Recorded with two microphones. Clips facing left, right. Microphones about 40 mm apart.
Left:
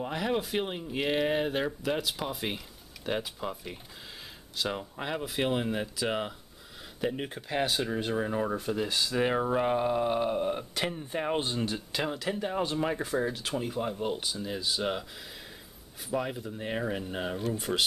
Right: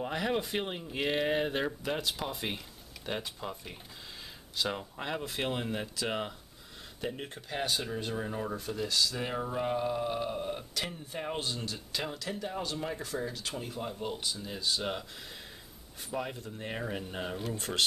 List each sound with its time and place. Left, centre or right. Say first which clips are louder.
0.0 s speech: left 1 dB; centre
16.1 s speech: left 5 dB; centre